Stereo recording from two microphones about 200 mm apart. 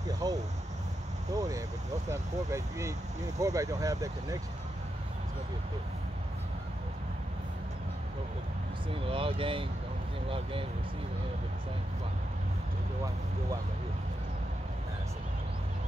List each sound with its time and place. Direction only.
0.2 s speech: 20° right (ahead or behind)
9.0 s speech: 25° right (ahead or behind)